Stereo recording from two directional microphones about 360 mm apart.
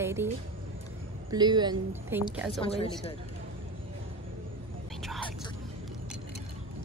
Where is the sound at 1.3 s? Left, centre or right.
Centre.